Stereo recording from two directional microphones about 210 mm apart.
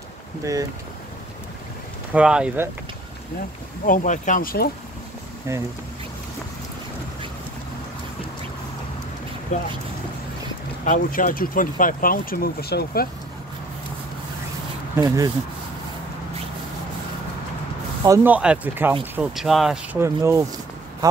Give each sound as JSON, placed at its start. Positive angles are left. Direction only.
{"t": 2.1, "sound": "speech", "side_deg": -5}
{"t": 3.8, "sound": "speech", "side_deg": 40}
{"t": 5.5, "sound": "speech", "side_deg": -15}
{"t": 9.5, "sound": "speech", "side_deg": 35}
{"t": 10.9, "sound": "speech", "side_deg": 40}
{"t": 15.0, "sound": "speech", "side_deg": -15}
{"t": 18.0, "sound": "speech", "side_deg": -10}